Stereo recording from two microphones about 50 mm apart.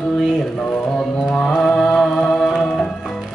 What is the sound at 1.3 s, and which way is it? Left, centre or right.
Music, centre.